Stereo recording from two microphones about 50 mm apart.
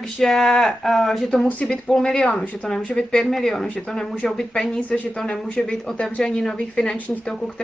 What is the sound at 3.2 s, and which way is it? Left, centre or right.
Speech, centre.